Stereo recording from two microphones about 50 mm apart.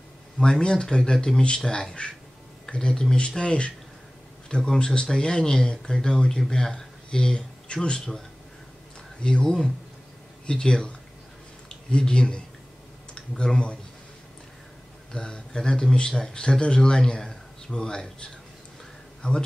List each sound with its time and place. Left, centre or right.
0.4 s speech: centre
9.2 s speech: centre
15.1 s speech: centre